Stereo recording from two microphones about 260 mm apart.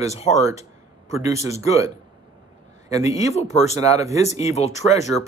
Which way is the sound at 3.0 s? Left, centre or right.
Left.